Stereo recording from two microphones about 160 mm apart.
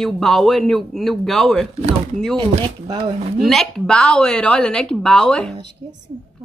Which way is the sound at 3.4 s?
Centre (ahead or behind).